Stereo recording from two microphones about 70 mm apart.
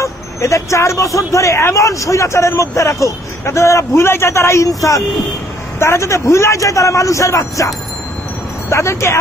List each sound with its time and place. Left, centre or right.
0.0 s speech: left